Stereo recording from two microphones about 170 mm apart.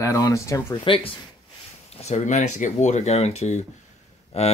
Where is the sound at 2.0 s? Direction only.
45° left (ahead or behind).